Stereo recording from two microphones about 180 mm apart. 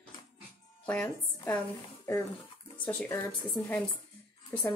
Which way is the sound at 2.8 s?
15° left (ahead or behind).